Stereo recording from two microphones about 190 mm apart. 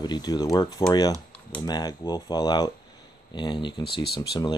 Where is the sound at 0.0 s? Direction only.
20° left (ahead or behind).